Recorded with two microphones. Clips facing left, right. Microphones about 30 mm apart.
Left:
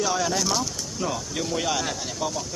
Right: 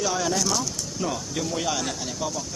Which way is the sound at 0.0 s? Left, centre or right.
Centre.